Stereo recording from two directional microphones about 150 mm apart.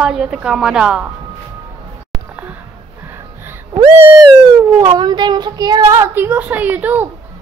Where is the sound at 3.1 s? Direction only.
15° right (ahead or behind).